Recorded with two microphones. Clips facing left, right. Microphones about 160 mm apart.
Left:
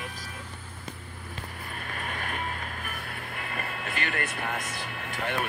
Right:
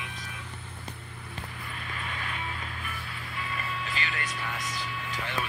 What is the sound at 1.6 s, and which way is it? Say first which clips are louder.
Music: left 3 dB; 50° left (ahead or behind).